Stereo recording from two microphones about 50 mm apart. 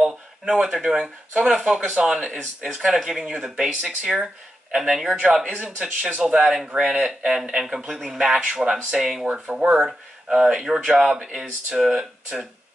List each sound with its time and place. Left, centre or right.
0.0 s speech: centre
5.6 s speech: centre
6.5 s speech: centre